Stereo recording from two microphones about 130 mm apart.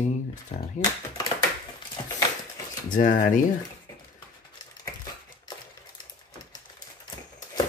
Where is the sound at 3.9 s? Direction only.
25° left (ahead or behind).